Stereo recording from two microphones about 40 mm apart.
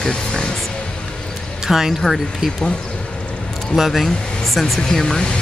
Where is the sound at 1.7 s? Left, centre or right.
Centre.